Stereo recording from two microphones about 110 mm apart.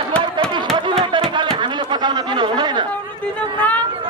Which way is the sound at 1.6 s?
45° right (ahead or behind).